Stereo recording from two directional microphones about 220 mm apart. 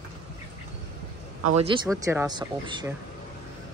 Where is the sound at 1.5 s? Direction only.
20° right (ahead or behind).